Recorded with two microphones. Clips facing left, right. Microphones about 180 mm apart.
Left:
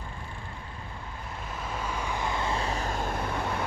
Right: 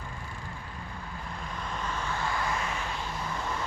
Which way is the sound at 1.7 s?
10° left (ahead or behind).